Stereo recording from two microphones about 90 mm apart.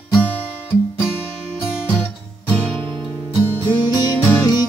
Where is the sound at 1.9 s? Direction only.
15° left (ahead or behind).